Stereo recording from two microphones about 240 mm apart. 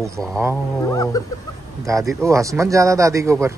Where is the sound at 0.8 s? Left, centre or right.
Centre.